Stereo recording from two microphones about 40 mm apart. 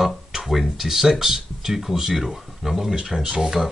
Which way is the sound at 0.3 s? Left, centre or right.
Centre.